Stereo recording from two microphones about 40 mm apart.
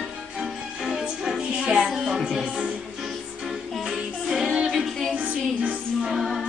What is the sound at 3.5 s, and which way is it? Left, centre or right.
Music, centre.